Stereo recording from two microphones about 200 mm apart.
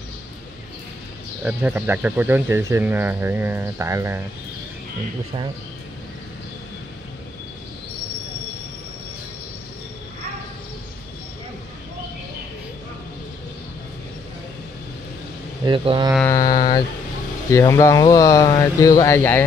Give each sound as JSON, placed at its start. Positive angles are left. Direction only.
{"t": 1.4, "sound": "speech", "side_deg": -10}
{"t": 15.6, "sound": "speech", "side_deg": -25}
{"t": 16.3, "sound": "mantra", "side_deg": 20}
{"t": 17.5, "sound": "speech", "side_deg": 15}